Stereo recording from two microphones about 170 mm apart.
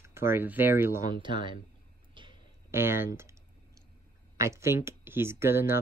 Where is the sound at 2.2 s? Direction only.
30° right (ahead or behind).